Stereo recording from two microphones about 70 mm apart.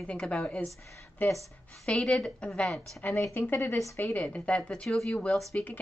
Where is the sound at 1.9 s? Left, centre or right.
Centre.